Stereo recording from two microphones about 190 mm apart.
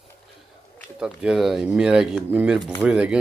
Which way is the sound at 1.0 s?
5° right (ahead or behind).